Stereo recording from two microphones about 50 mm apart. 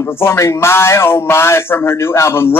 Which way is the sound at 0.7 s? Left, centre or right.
Left.